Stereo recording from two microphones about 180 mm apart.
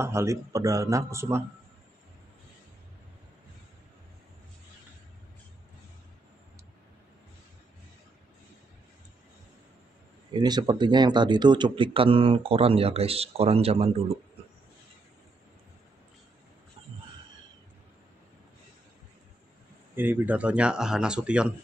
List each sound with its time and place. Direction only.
0.0 s speech: 15° right (ahead or behind)
10.3 s speech: 20° right (ahead or behind)
20.0 s speech: 10° right (ahead or behind)